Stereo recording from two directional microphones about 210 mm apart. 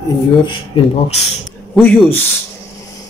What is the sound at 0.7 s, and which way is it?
Speech, 25° left (ahead or behind).